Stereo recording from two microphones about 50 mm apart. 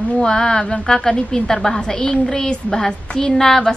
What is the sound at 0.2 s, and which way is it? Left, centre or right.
A woman's voice, centre.